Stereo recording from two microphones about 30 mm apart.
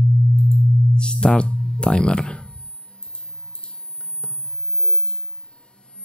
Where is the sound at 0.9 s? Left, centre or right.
Left.